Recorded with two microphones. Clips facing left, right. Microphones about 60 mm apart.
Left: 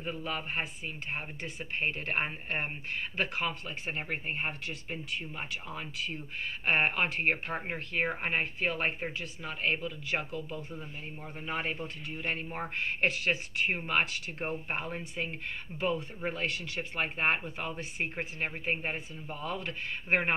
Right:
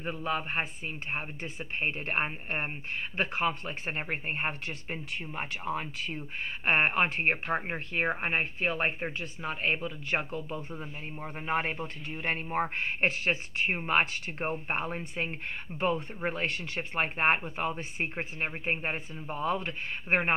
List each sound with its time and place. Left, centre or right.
0.0 s speech: right
13.7 s speech: right
13.9 s speech: right